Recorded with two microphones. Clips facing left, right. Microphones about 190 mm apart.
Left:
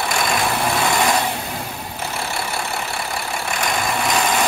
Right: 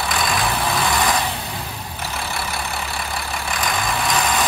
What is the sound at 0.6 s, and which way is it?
Vehicle, 15° left (ahead or behind).